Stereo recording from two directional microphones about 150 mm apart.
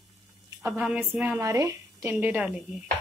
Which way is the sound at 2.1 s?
5° right (ahead or behind).